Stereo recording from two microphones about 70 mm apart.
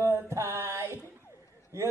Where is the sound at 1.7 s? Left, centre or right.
Right.